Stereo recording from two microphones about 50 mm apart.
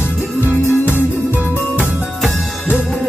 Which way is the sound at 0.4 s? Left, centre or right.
Left.